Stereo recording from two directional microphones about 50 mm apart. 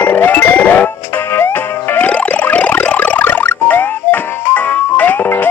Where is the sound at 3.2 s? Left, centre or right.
Left.